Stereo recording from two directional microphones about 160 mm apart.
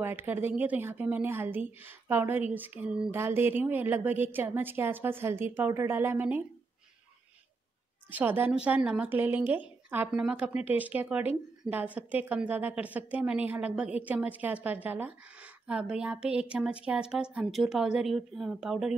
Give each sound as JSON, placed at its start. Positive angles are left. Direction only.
{"t": 0.0, "sound": "a woman's voice", "side_deg": -15}
{"t": 8.1, "sound": "a woman's voice", "side_deg": -10}